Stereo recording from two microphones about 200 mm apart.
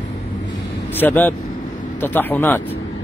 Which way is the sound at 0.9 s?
10° left (ahead or behind).